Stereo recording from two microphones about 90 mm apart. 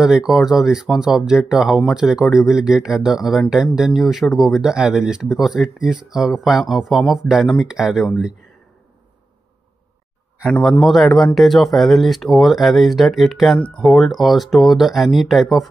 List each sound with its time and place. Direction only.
0.0 s speech: 5° right (ahead or behind)
10.8 s speech: centre (ahead or behind)
13.6 s speech: 10° left (ahead or behind)
13.8 s speech: centre (ahead or behind)